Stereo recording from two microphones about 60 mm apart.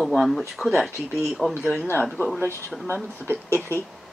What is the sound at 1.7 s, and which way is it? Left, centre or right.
Speech, left.